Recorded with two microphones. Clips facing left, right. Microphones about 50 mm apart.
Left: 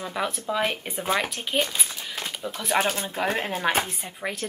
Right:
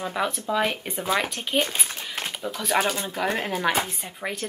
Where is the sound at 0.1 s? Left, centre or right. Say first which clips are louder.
Right 1 dB; centre.